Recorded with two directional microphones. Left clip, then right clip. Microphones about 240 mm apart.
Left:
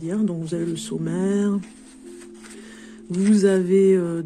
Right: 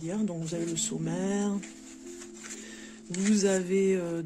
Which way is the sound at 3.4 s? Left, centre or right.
Centre.